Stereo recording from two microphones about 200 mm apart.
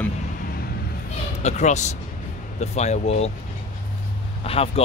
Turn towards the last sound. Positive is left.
turn(degrees=30)  # may be behind; listen again after turning